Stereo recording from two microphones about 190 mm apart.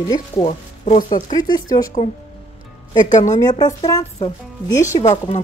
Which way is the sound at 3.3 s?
20° left (ahead or behind).